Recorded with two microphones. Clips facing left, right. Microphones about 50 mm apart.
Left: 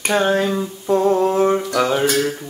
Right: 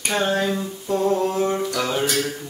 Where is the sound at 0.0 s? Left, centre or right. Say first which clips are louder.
Left 4 dB; centre.